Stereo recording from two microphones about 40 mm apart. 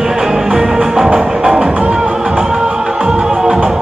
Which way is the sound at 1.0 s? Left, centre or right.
Right.